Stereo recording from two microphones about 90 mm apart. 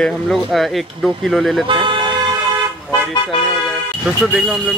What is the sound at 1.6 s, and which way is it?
Speech, 65° right (ahead or behind).